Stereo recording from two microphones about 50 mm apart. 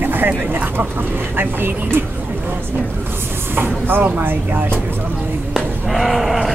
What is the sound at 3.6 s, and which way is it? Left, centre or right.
Speech, right.